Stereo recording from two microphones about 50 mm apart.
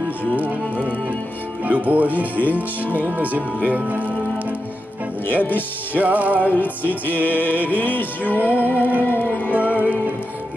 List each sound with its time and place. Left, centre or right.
1.6 s speech: right
3.6 s music: right
5.2 s speech: left
5.9 s speech: right
6.5 s music: left